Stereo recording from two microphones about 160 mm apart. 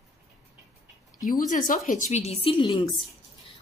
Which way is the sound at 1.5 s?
55° left (ahead or behind).